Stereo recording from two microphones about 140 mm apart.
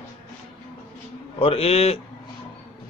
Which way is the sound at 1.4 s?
45° left (ahead or behind).